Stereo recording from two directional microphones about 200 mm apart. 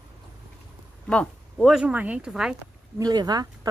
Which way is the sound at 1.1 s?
5° left (ahead or behind).